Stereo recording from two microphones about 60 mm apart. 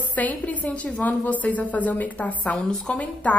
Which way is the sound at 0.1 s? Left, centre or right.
Left.